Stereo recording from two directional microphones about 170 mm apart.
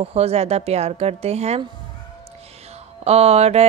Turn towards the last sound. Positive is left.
turn(degrees=-40)  # may be behind; listen again after turning